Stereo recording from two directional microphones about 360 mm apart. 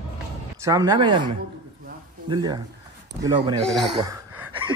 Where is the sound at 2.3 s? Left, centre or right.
Centre.